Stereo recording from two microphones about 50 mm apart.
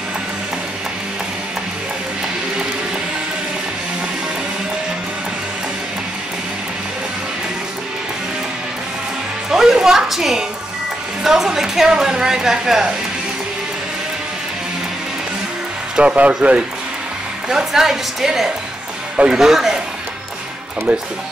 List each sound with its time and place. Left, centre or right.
9.5 s music: centre
11.2 s a woman's voice: centre
16.0 s speech: right
17.5 s a woman's voice: centre